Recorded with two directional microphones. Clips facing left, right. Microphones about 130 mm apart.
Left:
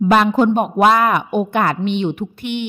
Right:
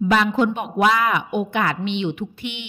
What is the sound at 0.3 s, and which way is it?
A woman's voice, 40° left (ahead or behind).